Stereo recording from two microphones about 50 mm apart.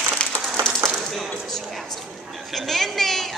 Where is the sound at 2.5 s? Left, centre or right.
Centre.